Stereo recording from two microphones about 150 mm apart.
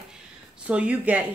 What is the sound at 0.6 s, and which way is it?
Speech, 10° right (ahead or behind).